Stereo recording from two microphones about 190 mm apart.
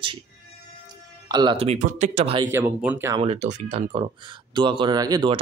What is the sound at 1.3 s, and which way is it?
Speech, 25° right (ahead or behind).